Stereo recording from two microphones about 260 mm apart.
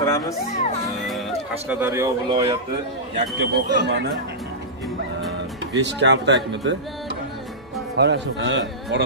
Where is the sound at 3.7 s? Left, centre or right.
Right.